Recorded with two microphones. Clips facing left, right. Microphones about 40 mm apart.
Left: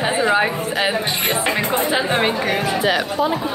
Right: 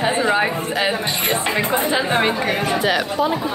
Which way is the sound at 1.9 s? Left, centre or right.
Centre.